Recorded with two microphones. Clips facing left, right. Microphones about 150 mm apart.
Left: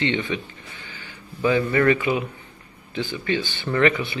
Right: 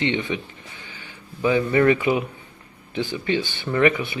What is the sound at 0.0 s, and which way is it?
Speech, 20° right (ahead or behind).